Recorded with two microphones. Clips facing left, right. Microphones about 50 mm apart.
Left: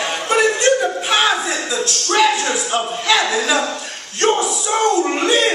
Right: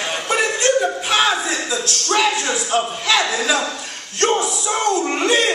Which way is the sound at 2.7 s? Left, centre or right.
Centre.